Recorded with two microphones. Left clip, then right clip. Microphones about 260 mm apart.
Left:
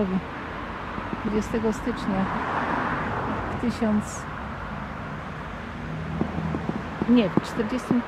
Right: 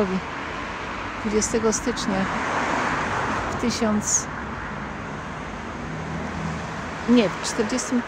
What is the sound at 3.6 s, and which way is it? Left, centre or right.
Speech, centre.